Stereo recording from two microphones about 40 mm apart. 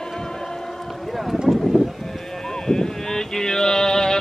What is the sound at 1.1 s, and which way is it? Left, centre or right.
Vehicle, centre.